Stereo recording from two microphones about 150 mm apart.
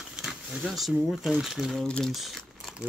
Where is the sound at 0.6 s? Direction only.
Centre (ahead or behind).